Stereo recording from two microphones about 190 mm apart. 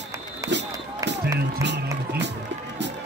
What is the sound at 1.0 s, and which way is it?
Music, 15° right (ahead or behind).